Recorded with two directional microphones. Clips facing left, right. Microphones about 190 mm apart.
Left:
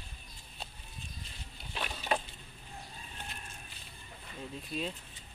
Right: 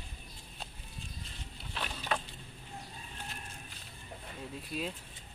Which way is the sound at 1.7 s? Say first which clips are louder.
Left 2 dB; 15° left (ahead or behind).